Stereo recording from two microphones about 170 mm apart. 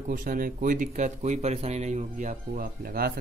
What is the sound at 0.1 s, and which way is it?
Speech, 55° right (ahead or behind).